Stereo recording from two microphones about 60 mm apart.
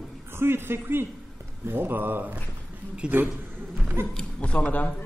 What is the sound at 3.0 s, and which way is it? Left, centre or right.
Speech, centre.